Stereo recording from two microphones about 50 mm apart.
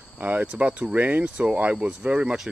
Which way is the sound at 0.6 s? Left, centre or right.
Right.